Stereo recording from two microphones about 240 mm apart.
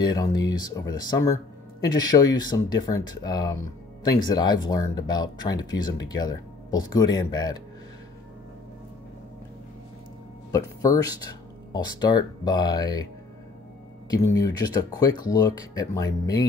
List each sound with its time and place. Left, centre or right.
0.0 s speech: centre
10.5 s speech: centre
14.1 s speech: centre